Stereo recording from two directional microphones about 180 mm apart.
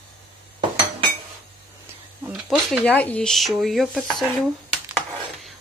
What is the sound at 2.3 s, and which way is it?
A woman's voice, centre (ahead or behind).